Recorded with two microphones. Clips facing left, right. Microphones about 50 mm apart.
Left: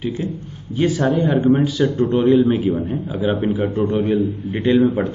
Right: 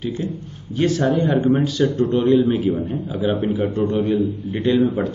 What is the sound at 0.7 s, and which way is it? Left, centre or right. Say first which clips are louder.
A man's voice: left 1 dB; centre.